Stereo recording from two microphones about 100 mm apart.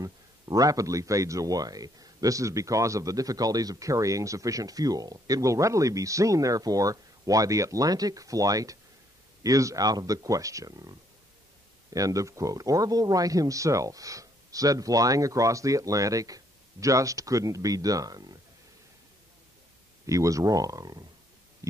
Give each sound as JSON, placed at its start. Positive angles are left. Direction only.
{"t": 0.0, "sound": "speech", "side_deg": -35}
{"t": 20.1, "sound": "speech", "side_deg": -35}